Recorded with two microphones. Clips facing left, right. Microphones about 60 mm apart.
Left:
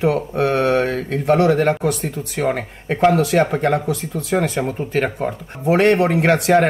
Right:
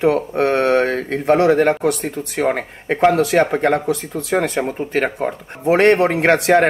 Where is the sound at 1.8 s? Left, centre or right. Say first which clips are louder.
Right 2 dB; right.